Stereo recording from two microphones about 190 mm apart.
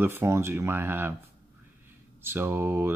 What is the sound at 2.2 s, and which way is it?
Speech, 10° right (ahead or behind).